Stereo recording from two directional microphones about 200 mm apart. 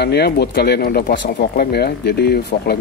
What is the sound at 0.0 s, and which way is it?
Speech, 55° left (ahead or behind).